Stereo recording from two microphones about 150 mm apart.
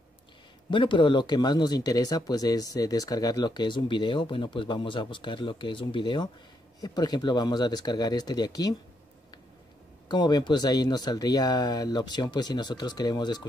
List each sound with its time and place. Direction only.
0.7 s speech: 35° left (ahead or behind)
10.0 s speech: 30° left (ahead or behind)